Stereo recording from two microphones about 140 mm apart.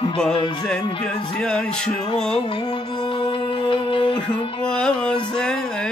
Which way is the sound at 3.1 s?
35° left (ahead or behind).